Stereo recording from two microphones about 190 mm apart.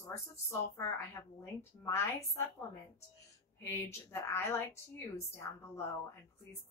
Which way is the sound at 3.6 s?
15° left (ahead or behind).